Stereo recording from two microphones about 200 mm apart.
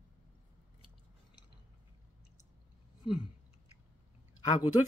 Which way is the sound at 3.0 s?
25° left (ahead or behind).